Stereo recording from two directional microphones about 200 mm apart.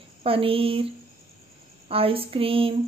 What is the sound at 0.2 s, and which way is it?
Speech, 25° right (ahead or behind).